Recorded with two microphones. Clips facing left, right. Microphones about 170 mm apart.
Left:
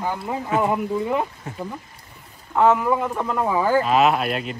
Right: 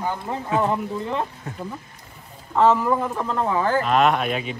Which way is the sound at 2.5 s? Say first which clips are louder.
Even; centre (ahead or behind).